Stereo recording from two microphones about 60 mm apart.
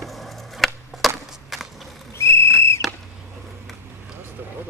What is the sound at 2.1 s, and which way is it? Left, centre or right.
Whistle, left.